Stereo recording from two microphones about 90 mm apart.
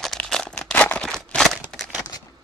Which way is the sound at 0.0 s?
5° left (ahead or behind).